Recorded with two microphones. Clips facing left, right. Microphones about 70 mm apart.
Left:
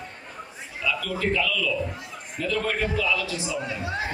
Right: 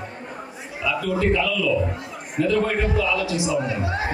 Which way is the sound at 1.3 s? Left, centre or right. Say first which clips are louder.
Right 2 dB; right.